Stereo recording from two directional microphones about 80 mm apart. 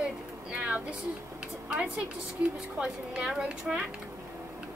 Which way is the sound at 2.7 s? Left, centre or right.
Centre.